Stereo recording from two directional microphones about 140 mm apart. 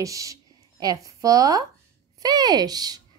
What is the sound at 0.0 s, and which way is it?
Speech, 25° right (ahead or behind).